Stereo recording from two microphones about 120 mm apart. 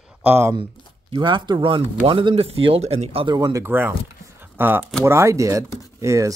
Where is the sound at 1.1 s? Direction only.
40° right (ahead or behind).